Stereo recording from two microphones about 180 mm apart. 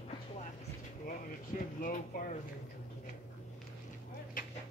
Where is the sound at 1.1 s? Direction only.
50° left (ahead or behind).